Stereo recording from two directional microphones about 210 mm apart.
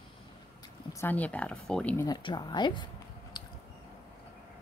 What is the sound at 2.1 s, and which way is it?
Speech, 20° left (ahead or behind).